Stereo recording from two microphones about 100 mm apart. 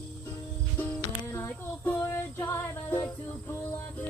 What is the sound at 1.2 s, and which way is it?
Child singing, 25° left (ahead or behind).